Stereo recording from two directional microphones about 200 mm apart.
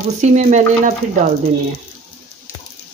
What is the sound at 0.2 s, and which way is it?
Speech, 35° right (ahead or behind).